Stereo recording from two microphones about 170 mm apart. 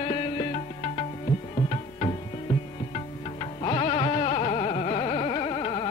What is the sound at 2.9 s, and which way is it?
Music, 30° left (ahead or behind).